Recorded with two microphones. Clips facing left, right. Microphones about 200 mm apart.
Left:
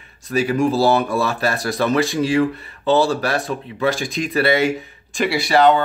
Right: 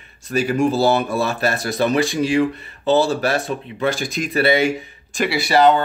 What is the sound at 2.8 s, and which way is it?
Speech, centre (ahead or behind).